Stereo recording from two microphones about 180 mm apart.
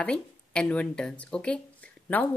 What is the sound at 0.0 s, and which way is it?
Speech, 5° left (ahead or behind).